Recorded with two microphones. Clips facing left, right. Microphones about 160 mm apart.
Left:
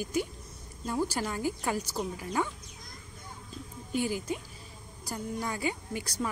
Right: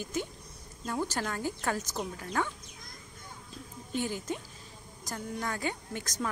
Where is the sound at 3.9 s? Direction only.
10° left (ahead or behind).